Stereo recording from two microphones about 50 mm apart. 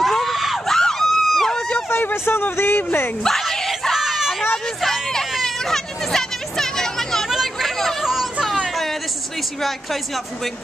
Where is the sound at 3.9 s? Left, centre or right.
Centre.